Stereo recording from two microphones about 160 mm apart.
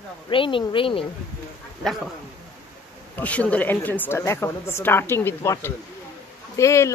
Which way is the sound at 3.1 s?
10° left (ahead or behind).